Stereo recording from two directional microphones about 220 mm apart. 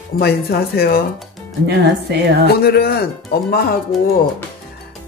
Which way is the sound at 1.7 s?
50° right (ahead or behind).